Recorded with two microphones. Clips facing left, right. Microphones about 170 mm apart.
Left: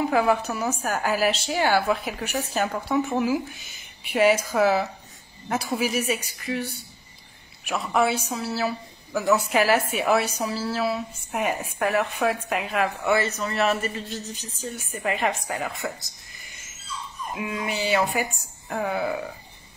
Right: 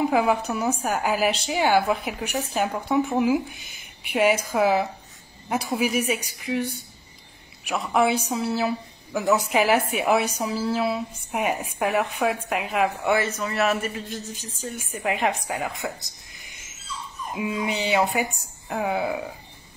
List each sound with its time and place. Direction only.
0.1 s a woman's voice: 10° right (ahead or behind)
17.4 s speech: 20° right (ahead or behind)
18.7 s a woman's voice: 10° right (ahead or behind)